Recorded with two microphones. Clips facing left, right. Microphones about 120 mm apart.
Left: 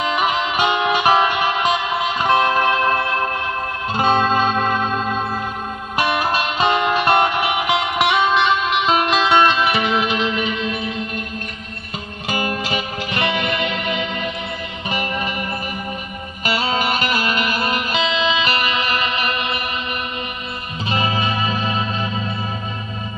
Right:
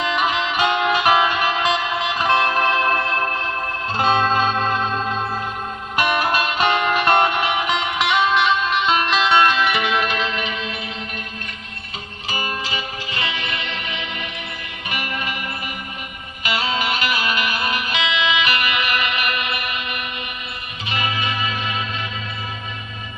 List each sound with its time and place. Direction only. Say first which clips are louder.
0.0 s music: left 1 dB; 10° left (ahead or behind)
12.3 s music: left 4 dB; 60° left (ahead or behind)
14.9 s music: left 4 dB; 30° left (ahead or behind)
16.4 s music: left 2 dB; 40° left (ahead or behind)
20.9 s music: left 4 dB; 35° left (ahead or behind)